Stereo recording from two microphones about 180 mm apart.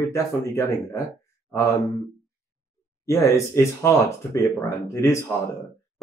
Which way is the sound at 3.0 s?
15° left (ahead or behind).